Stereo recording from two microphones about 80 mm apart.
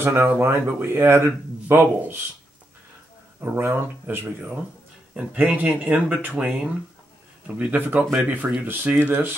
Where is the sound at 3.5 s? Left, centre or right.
Right.